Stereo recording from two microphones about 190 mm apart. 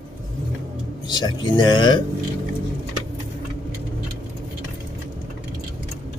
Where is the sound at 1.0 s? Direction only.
20° left (ahead or behind).